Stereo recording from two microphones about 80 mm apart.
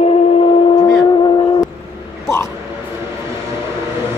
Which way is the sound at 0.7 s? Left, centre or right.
Left.